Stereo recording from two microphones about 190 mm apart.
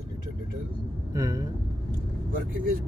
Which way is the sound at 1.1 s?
15° right (ahead or behind).